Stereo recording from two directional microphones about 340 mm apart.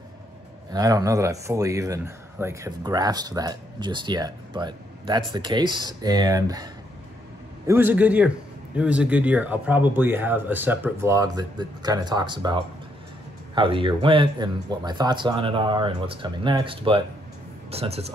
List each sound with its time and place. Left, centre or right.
0.7 s a man's voice: centre